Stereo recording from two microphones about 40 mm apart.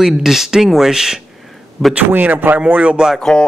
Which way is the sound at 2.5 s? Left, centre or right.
Right.